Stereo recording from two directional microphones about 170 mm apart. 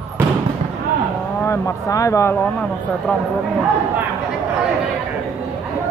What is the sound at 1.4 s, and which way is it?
Speech, 15° left (ahead or behind).